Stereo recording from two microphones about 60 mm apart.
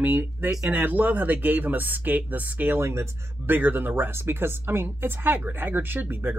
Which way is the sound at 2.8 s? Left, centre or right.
Right.